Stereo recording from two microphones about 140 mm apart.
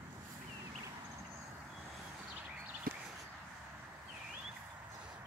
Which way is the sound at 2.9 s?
90° right.